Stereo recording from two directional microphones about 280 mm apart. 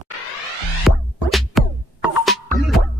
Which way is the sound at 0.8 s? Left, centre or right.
Centre.